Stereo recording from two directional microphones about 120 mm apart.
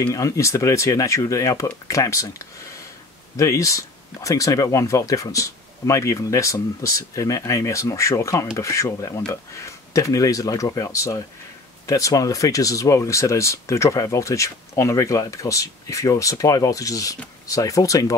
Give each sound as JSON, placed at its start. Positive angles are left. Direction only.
{"t": 0.0, "sound": "speech", "side_deg": 25}